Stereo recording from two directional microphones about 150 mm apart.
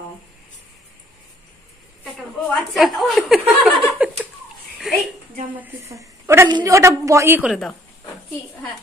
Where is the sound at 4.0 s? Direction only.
5° right (ahead or behind).